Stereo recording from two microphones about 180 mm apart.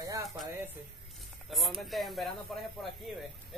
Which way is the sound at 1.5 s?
Centre (ahead or behind).